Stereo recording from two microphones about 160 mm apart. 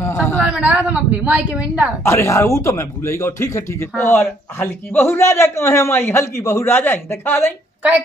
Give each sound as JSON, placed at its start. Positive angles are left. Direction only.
{"t": 0.0, "sound": "a sound", "side_deg": 15}
{"t": 0.4, "sound": "a woman's voice", "side_deg": -5}
{"t": 2.0, "sound": "speech", "side_deg": 15}